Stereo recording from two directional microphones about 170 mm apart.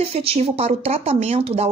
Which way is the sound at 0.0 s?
35° right (ahead or behind).